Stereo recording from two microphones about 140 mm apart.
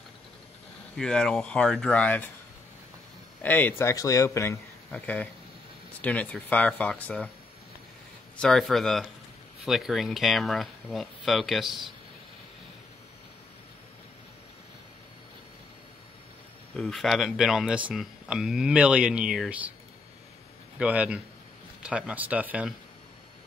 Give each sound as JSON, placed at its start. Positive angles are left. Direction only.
{"t": 0.9, "sound": "speech", "side_deg": 5}
{"t": 3.4, "sound": "speech", "side_deg": 10}
{"t": 8.4, "sound": "speech", "side_deg": 5}
{"t": 16.7, "sound": "speech", "side_deg": 0}
{"t": 20.8, "sound": "speech", "side_deg": -10}